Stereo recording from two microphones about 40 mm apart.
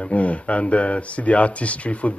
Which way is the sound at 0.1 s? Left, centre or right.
Left.